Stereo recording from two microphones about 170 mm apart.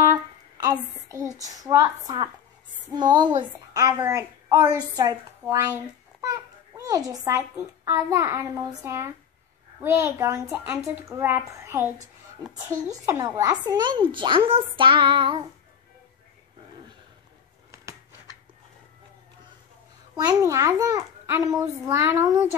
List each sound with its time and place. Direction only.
0.0 s a sound: 20° right (ahead or behind)
2.9 s a woman's voice: 25° right (ahead or behind)
13.0 s a woman's voice: 15° right (ahead or behind)
20.2 s a woman's voice: 20° right (ahead or behind)